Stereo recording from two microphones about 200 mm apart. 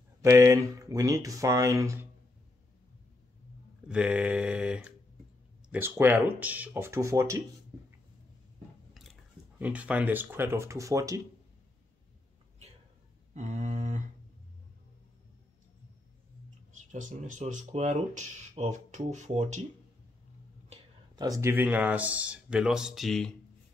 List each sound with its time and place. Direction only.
0.2 s speech: 15° right (ahead or behind)
3.9 s mantra: 5° right (ahead or behind)
5.7 s speech: 10° right (ahead or behind)
9.6 s speech: 5° right (ahead or behind)
13.3 s a sound: 35° right (ahead or behind)
16.9 s speech: 40° right (ahead or behind)
21.2 s speech: 15° right (ahead or behind); by 23.3 s centre (ahead or behind)